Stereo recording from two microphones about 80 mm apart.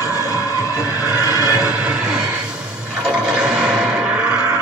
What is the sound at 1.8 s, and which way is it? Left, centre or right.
Music, centre.